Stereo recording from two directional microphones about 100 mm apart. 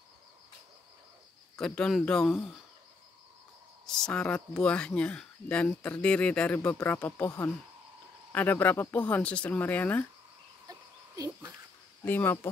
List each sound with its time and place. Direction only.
1.6 s speech: 5° left (ahead or behind)
3.8 s speech: 5° left (ahead or behind)
10.7 s a sound: 35° right (ahead or behind)
12.0 s speech: 20° left (ahead or behind)